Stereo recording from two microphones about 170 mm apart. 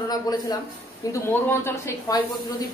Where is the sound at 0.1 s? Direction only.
25° left (ahead or behind).